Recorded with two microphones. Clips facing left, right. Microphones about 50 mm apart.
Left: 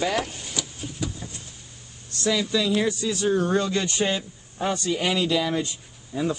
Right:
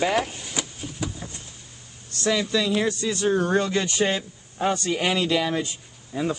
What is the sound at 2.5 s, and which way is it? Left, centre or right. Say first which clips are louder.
Speech: even; centre.